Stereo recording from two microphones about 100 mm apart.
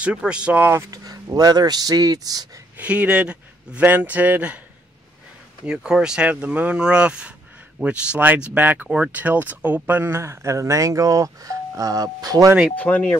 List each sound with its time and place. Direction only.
0.0 s a man's voice: 10° right (ahead or behind)
0.7 s speech: 25° right (ahead or behind)
0.9 s speech: 35° right (ahead or behind)
2.8 s a man's voice: 15° right (ahead or behind)
5.7 s a man's voice: 5° right (ahead or behind); by 12.5 s 40° right (ahead or behind)
12.7 s speech: 15° left (ahead or behind)